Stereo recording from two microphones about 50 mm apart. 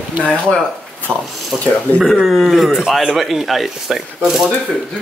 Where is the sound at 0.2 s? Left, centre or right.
Left.